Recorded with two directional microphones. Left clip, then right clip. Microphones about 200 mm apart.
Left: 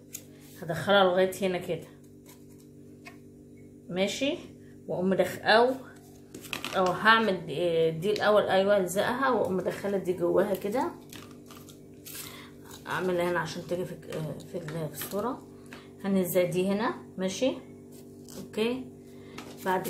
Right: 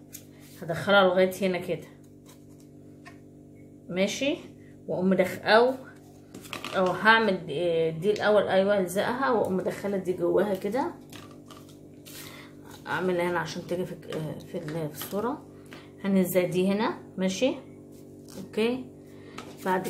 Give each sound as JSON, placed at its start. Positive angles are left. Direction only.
{"t": 0.6, "sound": "speech", "side_deg": -15}
{"t": 3.9, "sound": "speech", "side_deg": -15}
{"t": 6.7, "sound": "speech", "side_deg": -15}
{"t": 12.4, "sound": "speech", "side_deg": -15}
{"t": 18.6, "sound": "speech", "side_deg": -20}